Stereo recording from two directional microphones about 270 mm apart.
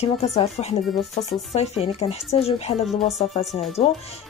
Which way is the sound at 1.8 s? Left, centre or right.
Left.